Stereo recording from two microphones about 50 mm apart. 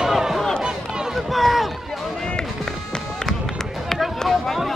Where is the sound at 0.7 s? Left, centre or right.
Centre.